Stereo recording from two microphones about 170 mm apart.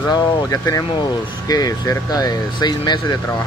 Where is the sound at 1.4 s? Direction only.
20° left (ahead or behind).